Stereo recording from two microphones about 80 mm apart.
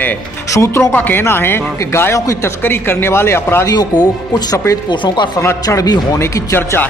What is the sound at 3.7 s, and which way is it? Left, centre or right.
Speech, left.